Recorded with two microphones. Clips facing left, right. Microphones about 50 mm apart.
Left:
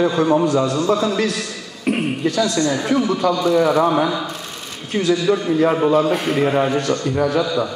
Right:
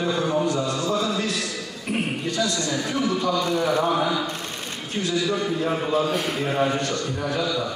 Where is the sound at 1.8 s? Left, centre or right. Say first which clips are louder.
Left 7 dB; left.